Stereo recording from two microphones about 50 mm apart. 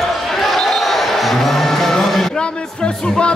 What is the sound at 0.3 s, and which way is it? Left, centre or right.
Music, centre.